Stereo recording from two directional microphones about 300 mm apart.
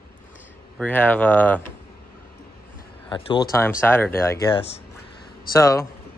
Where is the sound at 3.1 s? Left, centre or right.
Centre.